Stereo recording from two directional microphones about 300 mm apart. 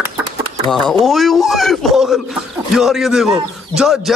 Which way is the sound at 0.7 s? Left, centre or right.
Centre.